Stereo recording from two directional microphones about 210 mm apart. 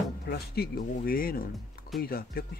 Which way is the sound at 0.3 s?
45° left (ahead or behind).